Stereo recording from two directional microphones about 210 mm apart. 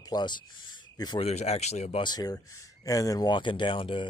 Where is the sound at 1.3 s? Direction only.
30° left (ahead or behind).